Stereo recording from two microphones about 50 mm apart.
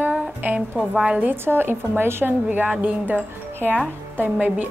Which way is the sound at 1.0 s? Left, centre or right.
Right.